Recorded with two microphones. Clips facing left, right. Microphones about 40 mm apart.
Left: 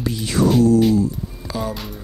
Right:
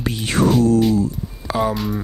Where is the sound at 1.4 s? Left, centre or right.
Right.